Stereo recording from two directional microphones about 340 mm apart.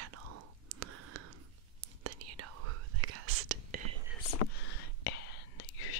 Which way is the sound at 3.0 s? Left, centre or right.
Right.